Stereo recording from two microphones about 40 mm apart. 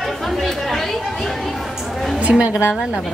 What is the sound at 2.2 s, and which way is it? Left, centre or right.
Speech, right.